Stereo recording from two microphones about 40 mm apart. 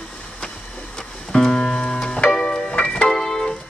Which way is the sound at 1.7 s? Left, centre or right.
Left.